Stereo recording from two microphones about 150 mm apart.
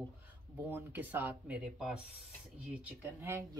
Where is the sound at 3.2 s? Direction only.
20° right (ahead or behind).